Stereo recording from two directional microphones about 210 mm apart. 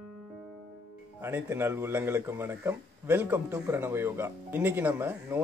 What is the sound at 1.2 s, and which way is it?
A man's voice, 10° right (ahead or behind).